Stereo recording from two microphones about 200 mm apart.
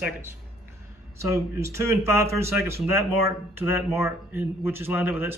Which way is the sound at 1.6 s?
15° right (ahead or behind).